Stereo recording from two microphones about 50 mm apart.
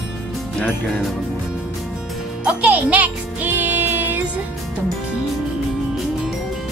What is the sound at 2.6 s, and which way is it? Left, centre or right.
Music, right.